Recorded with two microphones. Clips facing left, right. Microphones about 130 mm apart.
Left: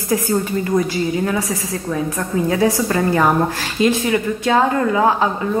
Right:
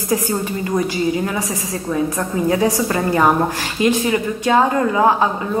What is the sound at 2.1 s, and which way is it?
A woman's voice, 15° right (ahead or behind).